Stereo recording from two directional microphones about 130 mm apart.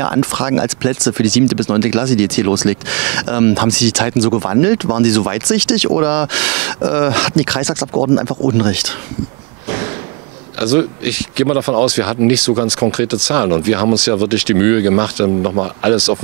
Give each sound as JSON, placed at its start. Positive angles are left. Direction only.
{"t": 0.0, "sound": "speech", "side_deg": -15}
{"t": 7.9, "sound": "speech", "side_deg": -25}
{"t": 10.6, "sound": "speech", "side_deg": -10}